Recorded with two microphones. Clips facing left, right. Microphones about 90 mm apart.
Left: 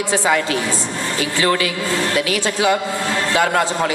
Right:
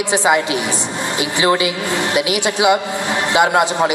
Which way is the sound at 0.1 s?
20° right (ahead or behind).